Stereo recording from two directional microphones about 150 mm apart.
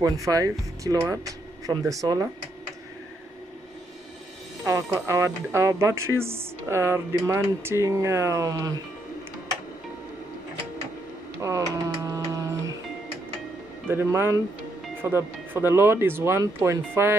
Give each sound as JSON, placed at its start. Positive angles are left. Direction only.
{"t": 0.0, "sound": "speech", "side_deg": -25}
{"t": 4.9, "sound": "speech", "side_deg": -20}
{"t": 11.4, "sound": "speech", "side_deg": -20}
{"t": 12.3, "sound": "music", "side_deg": -20}
{"t": 13.8, "sound": "speech", "side_deg": -15}